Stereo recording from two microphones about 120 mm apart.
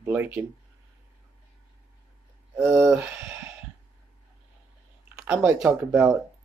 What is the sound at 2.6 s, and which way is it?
Speech, 5° right (ahead or behind).